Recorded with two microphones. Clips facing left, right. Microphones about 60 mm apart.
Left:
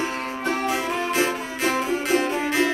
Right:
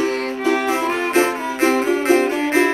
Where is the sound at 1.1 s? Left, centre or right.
Right.